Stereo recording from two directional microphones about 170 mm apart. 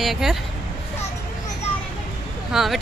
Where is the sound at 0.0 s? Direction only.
Centre (ahead or behind).